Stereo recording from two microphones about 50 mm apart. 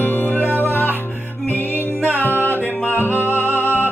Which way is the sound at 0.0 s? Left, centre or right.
Left.